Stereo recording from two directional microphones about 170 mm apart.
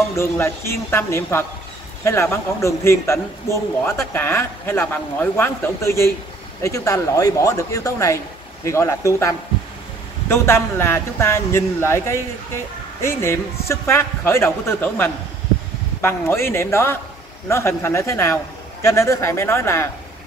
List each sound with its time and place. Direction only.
0.1 s a man's voice: 15° left (ahead or behind)